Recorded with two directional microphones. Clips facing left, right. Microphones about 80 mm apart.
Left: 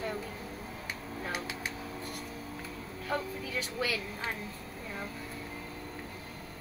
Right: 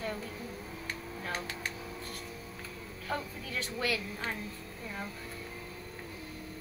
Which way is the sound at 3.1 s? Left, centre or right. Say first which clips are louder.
Left 2 dB; centre.